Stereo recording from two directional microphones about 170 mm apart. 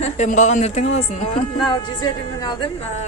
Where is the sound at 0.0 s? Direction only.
45° left (ahead or behind).